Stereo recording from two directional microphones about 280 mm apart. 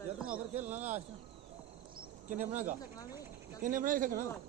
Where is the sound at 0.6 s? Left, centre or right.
Right.